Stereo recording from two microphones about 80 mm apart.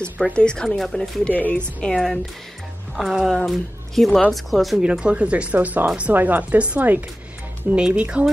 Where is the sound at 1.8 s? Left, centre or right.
Centre.